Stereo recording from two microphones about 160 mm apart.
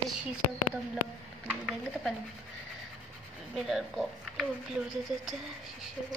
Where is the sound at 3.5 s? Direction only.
Centre (ahead or behind).